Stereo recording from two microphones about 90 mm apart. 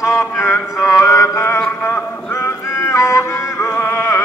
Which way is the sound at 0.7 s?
35° left (ahead or behind).